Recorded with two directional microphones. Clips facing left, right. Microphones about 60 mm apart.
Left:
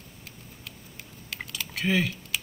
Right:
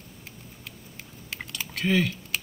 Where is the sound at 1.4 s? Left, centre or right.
Centre.